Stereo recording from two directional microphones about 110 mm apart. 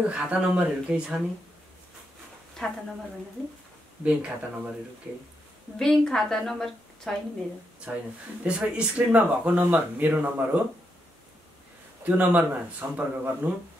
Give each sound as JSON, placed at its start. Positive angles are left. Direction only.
{"t": 0.1, "sound": "speech", "side_deg": -10}
{"t": 4.0, "sound": "speech", "side_deg": -10}
{"t": 5.8, "sound": "a woman's voice", "side_deg": 5}
{"t": 7.9, "sound": "speech", "side_deg": -15}
{"t": 12.0, "sound": "speech", "side_deg": -15}